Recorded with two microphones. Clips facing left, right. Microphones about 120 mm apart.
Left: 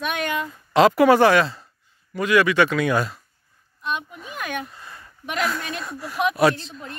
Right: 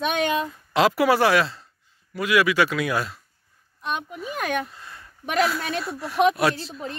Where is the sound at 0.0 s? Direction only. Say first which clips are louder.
Right 3 dB; 25° right (ahead or behind).